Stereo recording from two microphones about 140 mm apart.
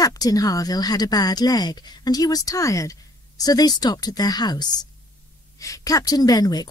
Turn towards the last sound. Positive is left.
turn(degrees=30)  # may be behind; listen again after turning